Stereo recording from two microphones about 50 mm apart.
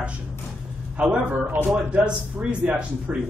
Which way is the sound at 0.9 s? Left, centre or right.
Right.